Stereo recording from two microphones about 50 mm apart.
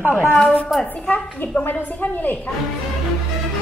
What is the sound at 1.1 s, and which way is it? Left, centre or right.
Speech, left.